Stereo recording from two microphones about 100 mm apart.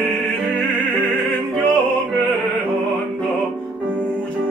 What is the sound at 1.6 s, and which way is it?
Music, 15° left (ahead or behind).